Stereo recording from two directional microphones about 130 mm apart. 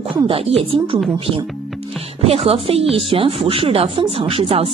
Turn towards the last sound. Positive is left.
turn(degrees=-45)  # may be behind; listen again after turning